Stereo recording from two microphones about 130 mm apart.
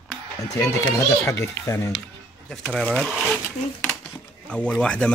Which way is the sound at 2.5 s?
5° left (ahead or behind).